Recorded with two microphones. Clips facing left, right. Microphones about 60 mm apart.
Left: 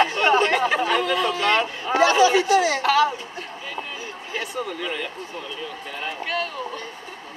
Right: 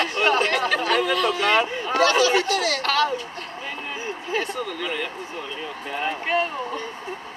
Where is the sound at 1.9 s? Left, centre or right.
Centre.